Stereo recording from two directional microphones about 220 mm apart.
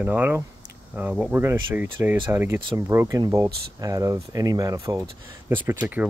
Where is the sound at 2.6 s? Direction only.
20° right (ahead or behind).